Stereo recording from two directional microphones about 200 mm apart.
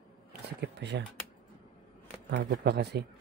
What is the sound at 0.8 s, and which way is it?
Speech, 60° right (ahead or behind).